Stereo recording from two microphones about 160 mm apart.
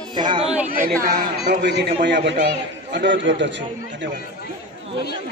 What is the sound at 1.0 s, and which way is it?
A man's voice, 75° right (ahead or behind).